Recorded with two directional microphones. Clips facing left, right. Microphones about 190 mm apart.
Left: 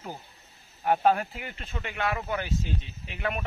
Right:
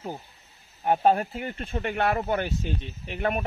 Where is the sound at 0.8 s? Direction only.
30° right (ahead or behind); by 3.4 s 45° right (ahead or behind).